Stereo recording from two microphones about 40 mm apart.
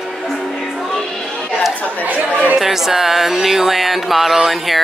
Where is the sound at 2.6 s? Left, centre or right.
Centre.